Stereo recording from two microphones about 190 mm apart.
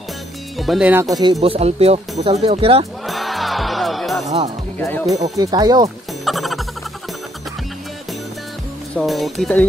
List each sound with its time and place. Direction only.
0.6 s speech: centre (ahead or behind)
1.1 s speech: 20° right (ahead or behind)
3.1 s music: centre (ahead or behind)
4.7 s speech: 10° left (ahead or behind)
5.4 s speech: 20° right (ahead or behind)
6.2 s music: centre (ahead or behind)
8.9 s speech: centre (ahead or behind)